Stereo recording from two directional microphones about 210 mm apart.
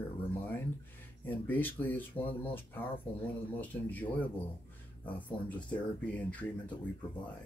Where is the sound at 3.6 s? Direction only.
10° left (ahead or behind).